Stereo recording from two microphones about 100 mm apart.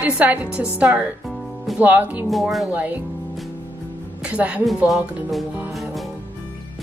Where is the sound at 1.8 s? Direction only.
20° right (ahead or behind).